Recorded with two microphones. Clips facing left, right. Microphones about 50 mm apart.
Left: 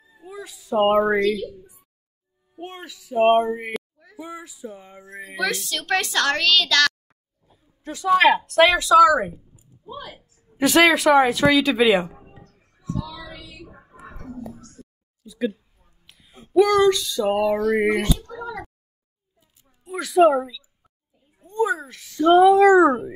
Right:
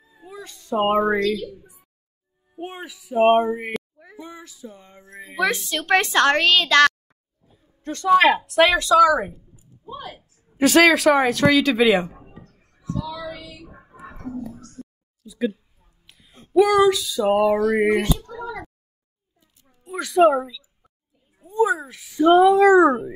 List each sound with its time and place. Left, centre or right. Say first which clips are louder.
0.2 s speech: left 2 dB; centre
2.5 s a sound: right 3 dB; centre
3.3 s speech: even; centre
5.4 s a woman's voice: right 3 dB; right
7.4 s speech: right 3 dB; centre
9.9 s a woman's voice: right 2 dB; right
10.6 s speech: right 1 dB; centre
12.2 s a sound: right 2 dB; centre
13.7 s whispering: right 1 dB; centre
14.5 s a sound: right 3 dB; centre
19.9 s a sound: even; centre
21.4 s speech: right 2 dB; centre